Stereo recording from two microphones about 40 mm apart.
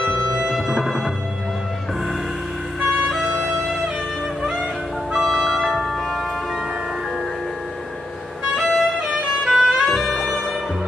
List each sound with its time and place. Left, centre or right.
0.5 s music: centre
5.1 s music: centre
8.5 s music: centre
9.0 s music: centre
9.9 s music: centre